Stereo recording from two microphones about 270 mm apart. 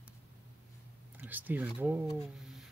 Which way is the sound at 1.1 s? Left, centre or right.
Centre.